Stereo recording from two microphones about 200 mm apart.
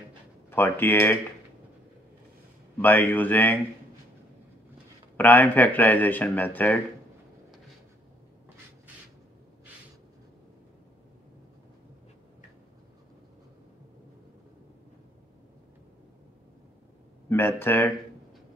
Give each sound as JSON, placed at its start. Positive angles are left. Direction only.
{"t": 0.5, "sound": "speech", "side_deg": 10}
{"t": 2.8, "sound": "speech", "side_deg": 10}
{"t": 5.1, "sound": "speech", "side_deg": 10}
{"t": 17.3, "sound": "speech", "side_deg": 10}